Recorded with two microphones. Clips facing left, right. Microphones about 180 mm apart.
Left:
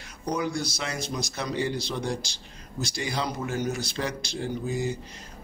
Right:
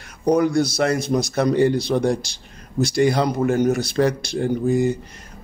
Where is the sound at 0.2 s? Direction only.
55° right (ahead or behind).